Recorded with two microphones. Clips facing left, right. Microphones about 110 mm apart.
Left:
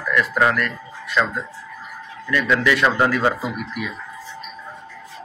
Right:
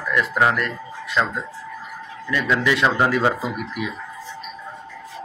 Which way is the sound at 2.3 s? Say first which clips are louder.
Left 2 dB; 20° right (ahead or behind).